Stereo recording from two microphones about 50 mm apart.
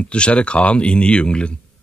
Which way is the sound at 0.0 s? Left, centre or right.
Left.